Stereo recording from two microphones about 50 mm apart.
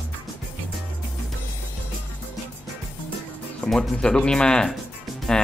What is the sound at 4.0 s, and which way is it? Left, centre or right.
Speech, centre.